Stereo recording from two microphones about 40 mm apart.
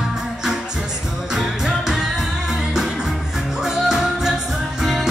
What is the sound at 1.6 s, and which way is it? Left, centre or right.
Music, centre.